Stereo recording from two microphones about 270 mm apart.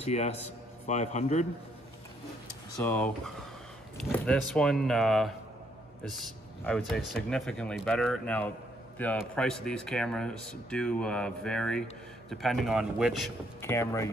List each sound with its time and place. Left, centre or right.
0.0 s a man's voice: left
2.8 s a man's voice: centre